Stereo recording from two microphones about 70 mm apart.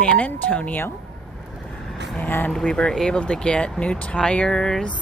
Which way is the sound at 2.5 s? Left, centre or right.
Centre.